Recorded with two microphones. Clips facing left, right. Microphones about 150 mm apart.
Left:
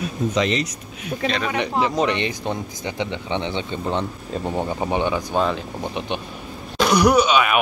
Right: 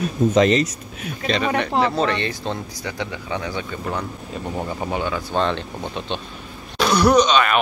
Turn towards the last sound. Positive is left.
turn(degrees=10)  # may be behind; listen again after turning